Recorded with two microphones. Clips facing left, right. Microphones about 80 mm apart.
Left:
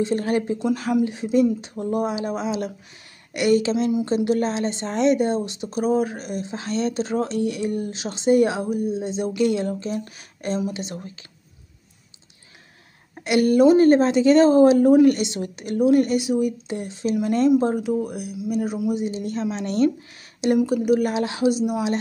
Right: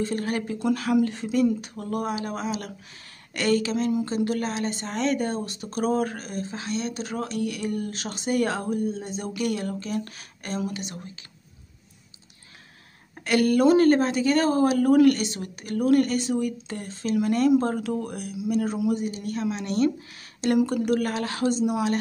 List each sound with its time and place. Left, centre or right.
0.0 s speech: left
1.0 s speech: centre
6.6 s speech: left; by 9.0 s centre
9.0 s speech: left
13.2 s speech: left
19.0 s speech: left
20.6 s speech: centre